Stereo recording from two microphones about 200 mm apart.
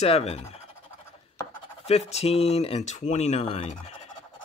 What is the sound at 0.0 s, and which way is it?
Speech, 30° left (ahead or behind).